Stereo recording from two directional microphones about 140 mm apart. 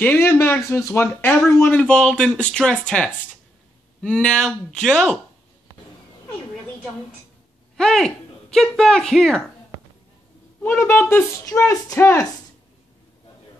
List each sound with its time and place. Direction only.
0.0 s speech: 15° left (ahead or behind)
7.7 s speech: 5° left (ahead or behind)
10.6 s speech: 15° left (ahead or behind)